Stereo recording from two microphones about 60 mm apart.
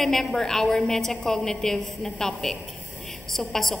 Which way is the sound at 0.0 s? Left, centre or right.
Centre.